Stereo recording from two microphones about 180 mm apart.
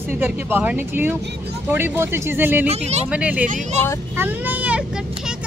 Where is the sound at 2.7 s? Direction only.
35° right (ahead or behind).